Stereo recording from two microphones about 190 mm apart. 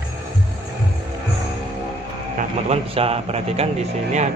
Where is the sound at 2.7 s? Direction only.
30° right (ahead or behind).